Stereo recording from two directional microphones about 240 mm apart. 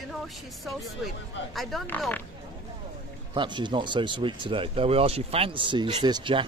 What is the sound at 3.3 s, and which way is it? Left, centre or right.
Speech, centre.